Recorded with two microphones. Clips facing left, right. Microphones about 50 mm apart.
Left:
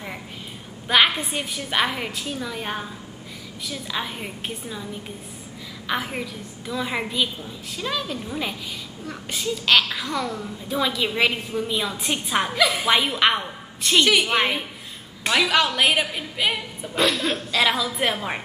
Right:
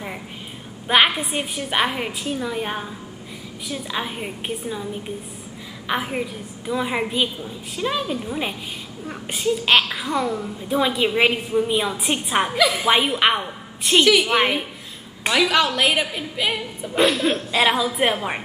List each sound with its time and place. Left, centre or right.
0.8 s a woman's voice: centre
6.6 s a woman's voice: centre
12.5 s a woman's voice: centre